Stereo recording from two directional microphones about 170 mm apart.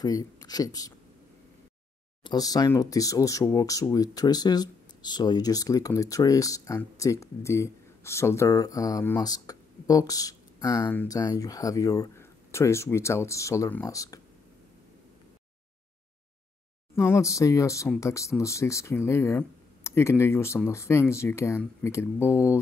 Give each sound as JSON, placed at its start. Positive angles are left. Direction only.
{"t": 0.0, "sound": "speech", "side_deg": 20}
{"t": 2.2, "sound": "speech", "side_deg": 20}
{"t": 16.9, "sound": "speech", "side_deg": 15}